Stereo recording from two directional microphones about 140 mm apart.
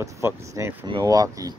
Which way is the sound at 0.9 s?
30° right (ahead or behind).